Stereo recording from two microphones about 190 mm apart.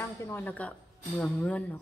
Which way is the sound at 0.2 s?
10° left (ahead or behind).